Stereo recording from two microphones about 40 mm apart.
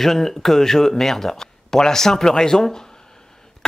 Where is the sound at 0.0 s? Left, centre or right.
Centre.